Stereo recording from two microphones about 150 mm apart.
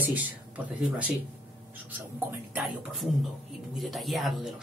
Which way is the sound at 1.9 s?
10° right (ahead or behind).